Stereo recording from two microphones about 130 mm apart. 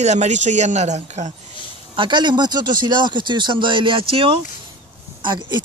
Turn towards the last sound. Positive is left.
turn(degrees=-35)  # may be behind; listen again after turning